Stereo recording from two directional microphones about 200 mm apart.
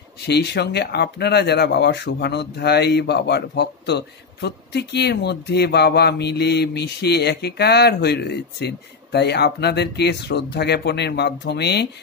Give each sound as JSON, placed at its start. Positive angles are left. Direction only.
{"t": 0.3, "sound": "speech", "side_deg": 55}